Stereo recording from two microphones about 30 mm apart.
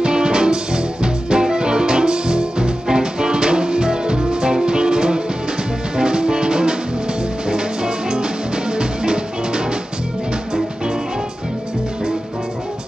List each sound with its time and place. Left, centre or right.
0.0 s music: right